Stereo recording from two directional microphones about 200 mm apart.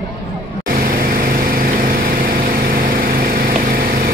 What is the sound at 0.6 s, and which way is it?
Vehicle, 45° right (ahead or behind).